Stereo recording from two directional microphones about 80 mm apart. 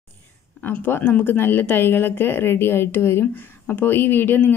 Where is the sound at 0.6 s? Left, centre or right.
Left.